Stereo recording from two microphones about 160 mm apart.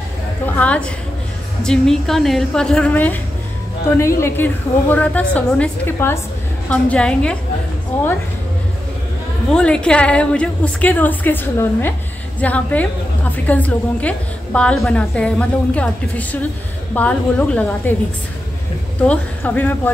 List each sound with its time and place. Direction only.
0.5 s a woman's voice: 10° left (ahead or behind)
4.2 s a woman's voice: 10° left (ahead or behind)
9.5 s a woman's voice: 5° left (ahead or behind)
18.9 s a woman's voice: 10° left (ahead or behind)